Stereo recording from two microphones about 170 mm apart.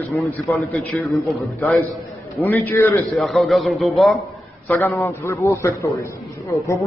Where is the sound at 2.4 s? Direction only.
15° left (ahead or behind).